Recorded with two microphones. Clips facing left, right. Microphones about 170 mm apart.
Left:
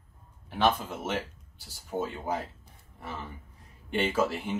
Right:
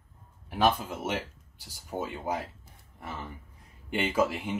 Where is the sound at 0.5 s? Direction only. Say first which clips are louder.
Even; 10° right (ahead or behind).